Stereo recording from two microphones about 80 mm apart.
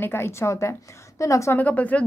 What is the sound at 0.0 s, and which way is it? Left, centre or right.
A woman's voice, left.